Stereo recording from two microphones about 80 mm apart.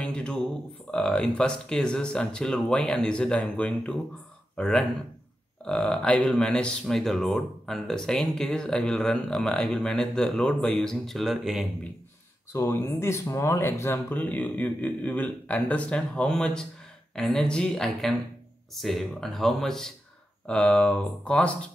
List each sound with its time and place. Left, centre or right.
0.0 s a sound: centre
0.9 s speech: centre
12.5 s speech: left
14.1 s speech: centre